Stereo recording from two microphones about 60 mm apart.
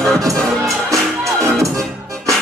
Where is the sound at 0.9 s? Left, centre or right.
Right.